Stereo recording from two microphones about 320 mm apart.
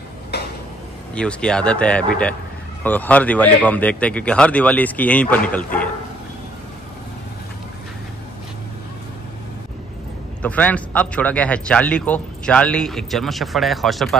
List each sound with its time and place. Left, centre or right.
0.3 s a sound: left
1.1 s a man's voice: centre
10.4 s a man's voice: centre